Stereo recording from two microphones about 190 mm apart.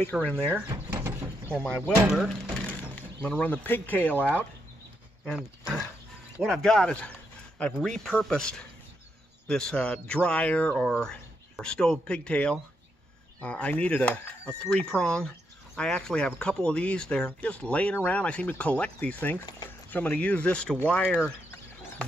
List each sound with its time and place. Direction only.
0.2 s speech: 5° left (ahead or behind)
0.6 s a sound: 10° right (ahead or behind)
1.5 s speech: 5° left (ahead or behind)
6.4 s speech: 5° left (ahead or behind)